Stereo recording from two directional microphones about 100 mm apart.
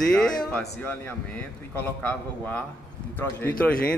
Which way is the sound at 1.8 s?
20° left (ahead or behind).